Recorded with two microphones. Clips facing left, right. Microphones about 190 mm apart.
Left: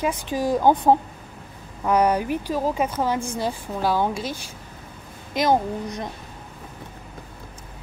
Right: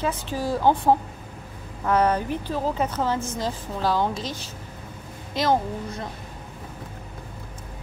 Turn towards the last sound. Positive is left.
turn(degrees=15)  # may be behind; listen again after turning